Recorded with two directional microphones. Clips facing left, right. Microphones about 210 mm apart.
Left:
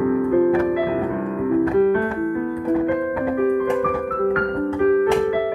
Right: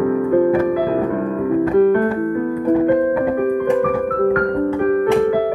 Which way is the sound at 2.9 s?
50° right (ahead or behind).